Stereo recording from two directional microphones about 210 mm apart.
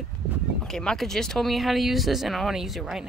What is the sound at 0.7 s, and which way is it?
Speech, centre (ahead or behind).